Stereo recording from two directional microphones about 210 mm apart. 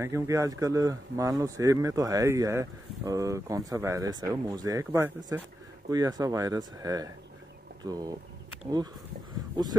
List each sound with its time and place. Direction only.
0.0 s speech: 15° right (ahead or behind)